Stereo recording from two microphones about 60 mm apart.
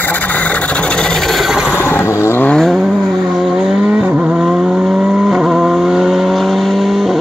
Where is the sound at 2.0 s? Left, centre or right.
Left.